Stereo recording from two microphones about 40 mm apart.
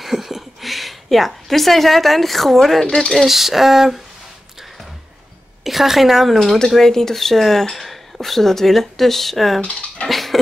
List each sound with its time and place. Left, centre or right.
0.0 s a woman's voice: centre
5.6 s a woman's voice: centre
9.6 s speech: left
10.0 s dog: centre